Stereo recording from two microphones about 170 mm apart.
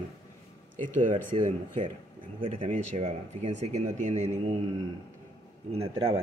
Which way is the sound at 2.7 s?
40° right (ahead or behind).